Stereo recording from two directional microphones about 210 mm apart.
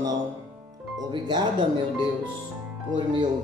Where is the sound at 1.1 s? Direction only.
20° right (ahead or behind).